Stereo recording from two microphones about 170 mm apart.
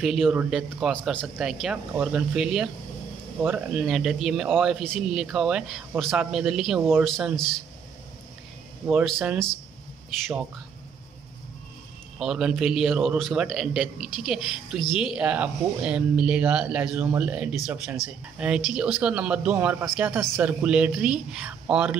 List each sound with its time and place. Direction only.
0.0 s a man's voice: centre (ahead or behind)
8.8 s speech: 5° right (ahead or behind)
12.2 s a man's voice: 5° right (ahead or behind)